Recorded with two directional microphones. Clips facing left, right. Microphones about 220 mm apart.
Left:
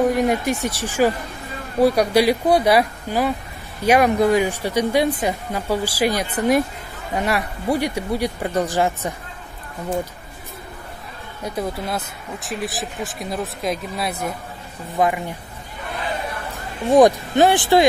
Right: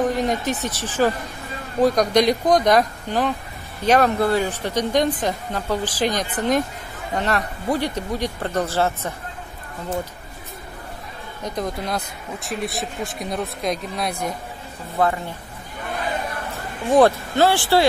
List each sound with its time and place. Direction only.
0.0 s speech: 10° left (ahead or behind)
11.4 s speech: 5° left (ahead or behind)
16.9 s speech: 15° left (ahead or behind)